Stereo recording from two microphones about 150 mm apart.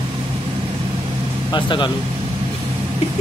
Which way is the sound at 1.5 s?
30° left (ahead or behind).